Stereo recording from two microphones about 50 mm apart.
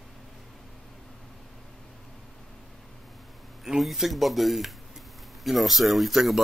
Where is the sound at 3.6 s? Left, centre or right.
Centre.